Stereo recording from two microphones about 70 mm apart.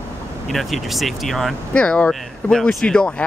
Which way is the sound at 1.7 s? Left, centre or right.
Centre.